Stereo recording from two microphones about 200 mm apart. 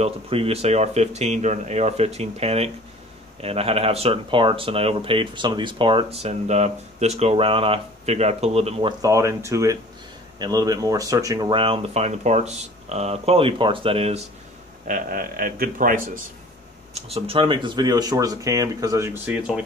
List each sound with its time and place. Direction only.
0.0 s speech: 30° right (ahead or behind)
9.0 s speech: 15° right (ahead or behind); by 14.2 s 30° right (ahead or behind)
14.9 s speech: 45° right (ahead or behind)
16.9 s speech: 30° right (ahead or behind); by 19.6 s 5° right (ahead or behind)